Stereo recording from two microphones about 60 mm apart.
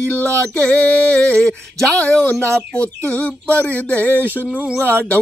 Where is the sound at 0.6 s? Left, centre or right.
Left.